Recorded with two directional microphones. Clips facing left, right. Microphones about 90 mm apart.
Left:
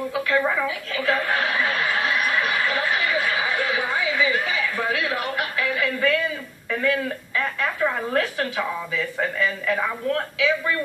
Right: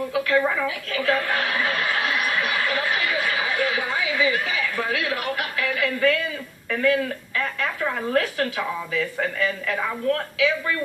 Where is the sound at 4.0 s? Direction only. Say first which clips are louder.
Even; 30° left (ahead or behind).